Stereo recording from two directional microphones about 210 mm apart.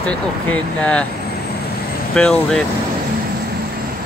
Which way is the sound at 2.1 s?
5° left (ahead or behind).